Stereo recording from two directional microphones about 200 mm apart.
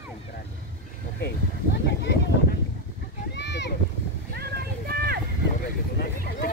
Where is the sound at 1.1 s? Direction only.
55° left (ahead or behind).